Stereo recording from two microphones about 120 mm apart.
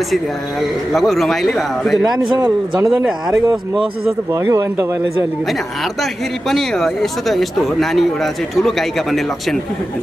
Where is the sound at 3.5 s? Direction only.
5° right (ahead or behind).